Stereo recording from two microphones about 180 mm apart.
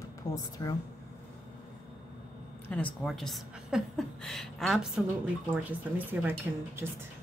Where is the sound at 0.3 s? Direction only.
20° left (ahead or behind).